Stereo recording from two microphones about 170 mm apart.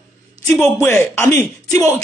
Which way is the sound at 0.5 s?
15° left (ahead or behind).